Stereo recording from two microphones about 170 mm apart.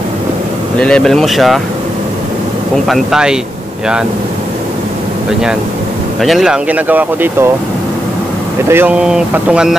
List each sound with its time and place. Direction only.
0.7 s speech: 5° left (ahead or behind)
2.9 s speech: 5° right (ahead or behind)
6.2 s speech: centre (ahead or behind)
8.6 s speech: 10° right (ahead or behind)